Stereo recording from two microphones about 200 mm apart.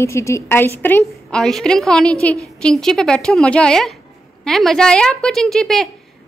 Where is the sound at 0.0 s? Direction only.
15° left (ahead or behind).